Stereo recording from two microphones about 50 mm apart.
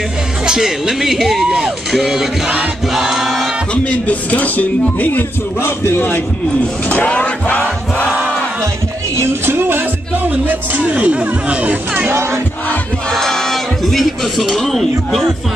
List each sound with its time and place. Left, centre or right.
0.5 s speech: centre
2.9 s music: centre
3.7 s speech: left
5.6 s speech: left
6.9 s speech: left
9.2 s music: right
10.3 s speech: right
12.1 s music: right
13.1 s speech: centre